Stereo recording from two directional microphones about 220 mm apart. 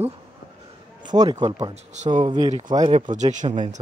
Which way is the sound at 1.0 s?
15° right (ahead or behind).